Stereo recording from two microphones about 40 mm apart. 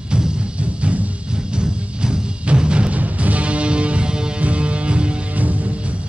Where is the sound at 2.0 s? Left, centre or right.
Right.